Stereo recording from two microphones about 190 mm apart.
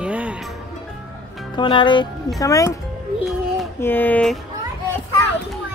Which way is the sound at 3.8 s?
10° left (ahead or behind).